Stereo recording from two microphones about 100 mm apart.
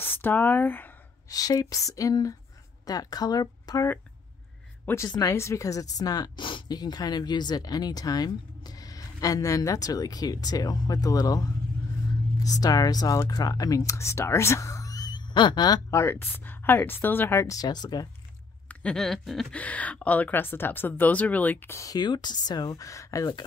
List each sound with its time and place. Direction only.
0.0 s speech: 20° left (ahead or behind)
1.3 s speech: 40° left (ahead or behind)
5.0 s speech: 35° left (ahead or behind)
15.9 s a woman's voice: 25° left (ahead or behind); by 18.0 s 45° left (ahead or behind)
18.7 s speech: 10° left (ahead or behind)
19.5 s speech: 15° left (ahead or behind)
21.7 s speech: 40° left (ahead or behind)